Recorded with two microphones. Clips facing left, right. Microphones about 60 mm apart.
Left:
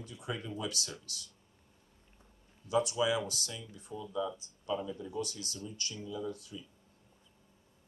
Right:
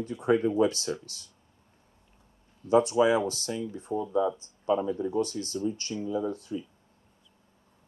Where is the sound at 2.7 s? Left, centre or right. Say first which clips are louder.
Right 9 dB; right.